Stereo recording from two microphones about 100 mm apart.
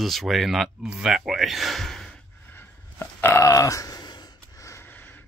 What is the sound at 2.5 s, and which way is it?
Burping, 25° left (ahead or behind).